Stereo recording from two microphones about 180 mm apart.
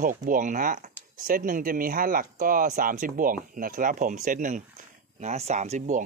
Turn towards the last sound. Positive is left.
turn(degrees=-45)  # may be behind; listen again after turning